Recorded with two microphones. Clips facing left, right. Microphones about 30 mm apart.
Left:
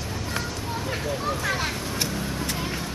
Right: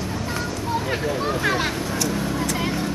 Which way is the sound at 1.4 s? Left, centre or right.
Right.